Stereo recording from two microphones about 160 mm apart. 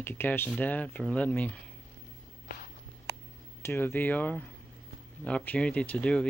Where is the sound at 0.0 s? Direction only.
15° left (ahead or behind).